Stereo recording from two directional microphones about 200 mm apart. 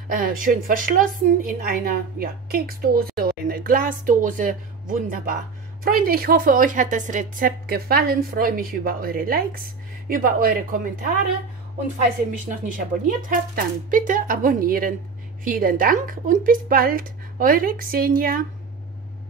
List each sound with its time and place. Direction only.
0.1 s a woman's voice: 45° right (ahead or behind)
12.3 s a woman's voice: 40° right (ahead or behind)